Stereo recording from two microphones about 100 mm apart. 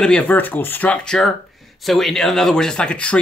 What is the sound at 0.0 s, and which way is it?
Speech, 10° left (ahead or behind).